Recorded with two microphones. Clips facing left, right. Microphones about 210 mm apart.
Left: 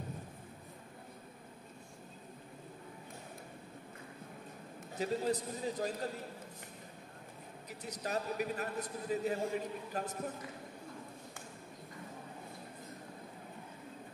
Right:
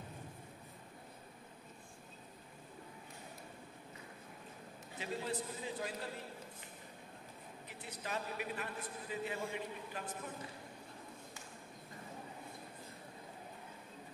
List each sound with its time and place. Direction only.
4.9 s a man's voice: 40° left (ahead or behind)
7.8 s a man's voice: 40° left (ahead or behind)